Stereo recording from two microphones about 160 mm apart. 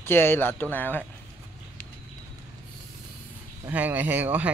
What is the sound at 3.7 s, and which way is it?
Speech, 10° right (ahead or behind).